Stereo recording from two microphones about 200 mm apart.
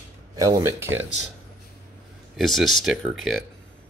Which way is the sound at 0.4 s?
15° right (ahead or behind).